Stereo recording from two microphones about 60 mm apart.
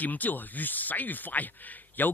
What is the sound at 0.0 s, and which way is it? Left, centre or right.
Speech, left.